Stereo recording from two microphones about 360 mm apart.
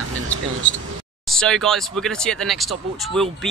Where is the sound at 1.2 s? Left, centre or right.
Centre.